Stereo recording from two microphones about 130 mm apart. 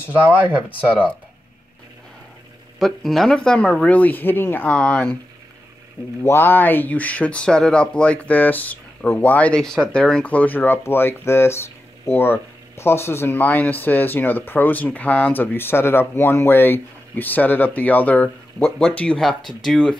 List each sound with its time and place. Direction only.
0.1 s speech: 10° right (ahead or behind)
2.8 s speech: centre (ahead or behind)
6.2 s speech: 15° left (ahead or behind)